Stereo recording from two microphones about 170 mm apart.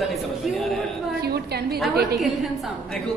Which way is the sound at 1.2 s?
70° right (ahead or behind).